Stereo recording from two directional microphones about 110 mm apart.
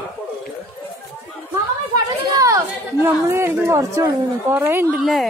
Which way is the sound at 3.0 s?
25° right (ahead or behind).